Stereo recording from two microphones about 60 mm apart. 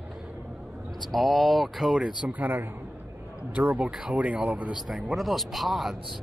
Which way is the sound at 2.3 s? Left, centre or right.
Right.